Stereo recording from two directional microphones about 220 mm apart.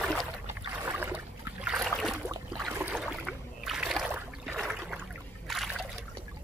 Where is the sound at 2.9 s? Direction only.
Centre (ahead or behind).